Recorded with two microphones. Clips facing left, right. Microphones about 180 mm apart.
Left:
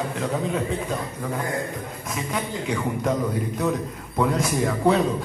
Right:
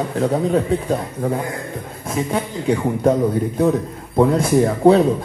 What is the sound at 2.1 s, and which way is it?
Speech, 30° right (ahead or behind).